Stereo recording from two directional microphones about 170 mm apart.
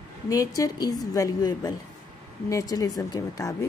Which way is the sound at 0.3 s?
20° left (ahead or behind).